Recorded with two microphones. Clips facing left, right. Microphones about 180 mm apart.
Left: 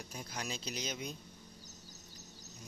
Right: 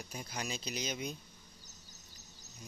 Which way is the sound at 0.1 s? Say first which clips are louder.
Right 2 dB; centre (ahead or behind).